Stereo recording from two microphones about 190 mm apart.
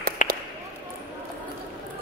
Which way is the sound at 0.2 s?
40° left (ahead or behind).